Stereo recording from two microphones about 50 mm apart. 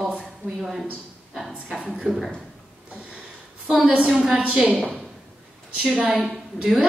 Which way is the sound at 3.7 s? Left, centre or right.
Right.